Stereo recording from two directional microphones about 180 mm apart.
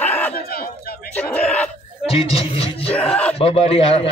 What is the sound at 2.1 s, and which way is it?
Music, 30° left (ahead or behind).